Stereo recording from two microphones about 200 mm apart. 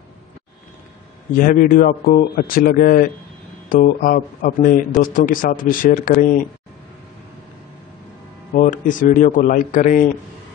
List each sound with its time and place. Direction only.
1.4 s speech: 45° left (ahead or behind)
8.5 s a man's voice: 40° left (ahead or behind)